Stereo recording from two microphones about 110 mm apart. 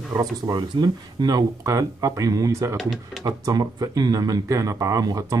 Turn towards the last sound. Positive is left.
turn(degrees=-30)  # may be behind; listen again after turning